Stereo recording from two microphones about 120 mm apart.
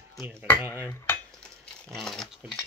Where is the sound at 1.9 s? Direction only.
5° left (ahead or behind).